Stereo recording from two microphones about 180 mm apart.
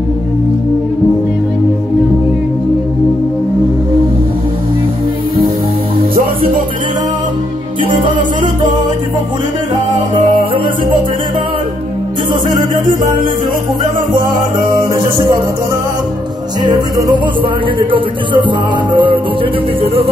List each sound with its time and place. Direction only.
6.1 s music: 50° right (ahead or behind)
14.6 s music: 50° right (ahead or behind)
16.6 s music: 20° right (ahead or behind)